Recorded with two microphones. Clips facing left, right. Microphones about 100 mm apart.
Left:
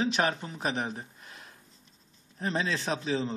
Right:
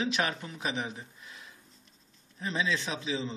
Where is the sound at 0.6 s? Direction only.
45° left (ahead or behind).